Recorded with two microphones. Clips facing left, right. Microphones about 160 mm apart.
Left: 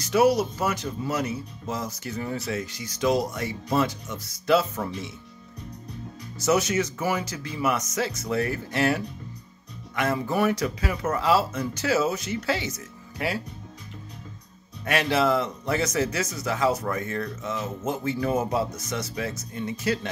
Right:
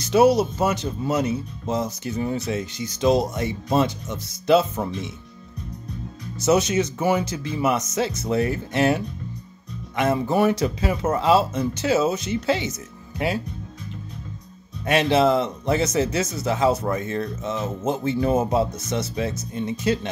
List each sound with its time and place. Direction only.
0.0 s speech: 25° right (ahead or behind)
6.4 s speech: 20° right (ahead or behind)
14.9 s speech: 25° right (ahead or behind)